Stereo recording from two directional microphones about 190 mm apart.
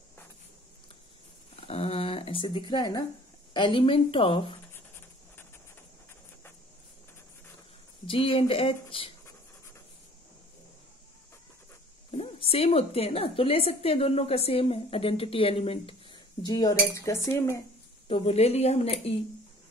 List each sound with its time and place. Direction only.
1.7 s a sound: 30° left (ahead or behind)
3.5 s a woman's voice: 25° left (ahead or behind)
8.1 s a woman's voice: 30° left (ahead or behind)
12.1 s a woman's voice: 30° left (ahead or behind); by 17.6 s 15° left (ahead or behind)
18.0 s a woman's voice: 30° left (ahead or behind)